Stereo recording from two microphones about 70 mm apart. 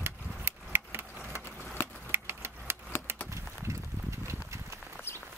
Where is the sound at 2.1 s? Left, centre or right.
Right.